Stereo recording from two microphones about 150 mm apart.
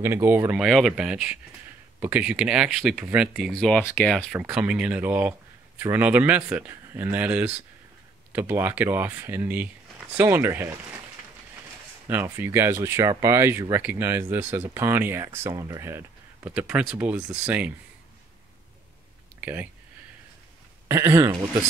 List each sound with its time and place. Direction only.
0.0 s speech: 15° right (ahead or behind)
0.6 s speech: centre (ahead or behind)
3.5 s speech: 5° left (ahead or behind)
4.3 s speech: 10° right (ahead or behind)
12.1 s speech: 15° right (ahead or behind)
19.4 s speech: 10° right (ahead or behind)
20.9 s speech: 15° right (ahead or behind)